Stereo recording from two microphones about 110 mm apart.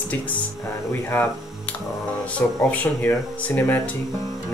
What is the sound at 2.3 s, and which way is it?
Speech, 15° left (ahead or behind).